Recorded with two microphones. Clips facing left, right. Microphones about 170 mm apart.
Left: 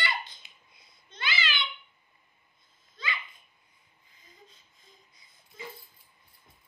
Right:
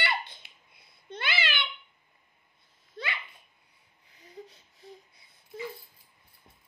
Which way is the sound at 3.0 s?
65° right (ahead or behind).